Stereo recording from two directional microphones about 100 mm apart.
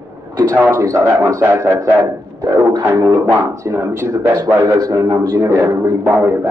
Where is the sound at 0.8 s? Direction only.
30° right (ahead or behind).